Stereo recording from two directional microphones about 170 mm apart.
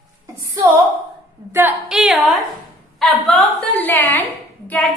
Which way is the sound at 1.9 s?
Centre (ahead or behind).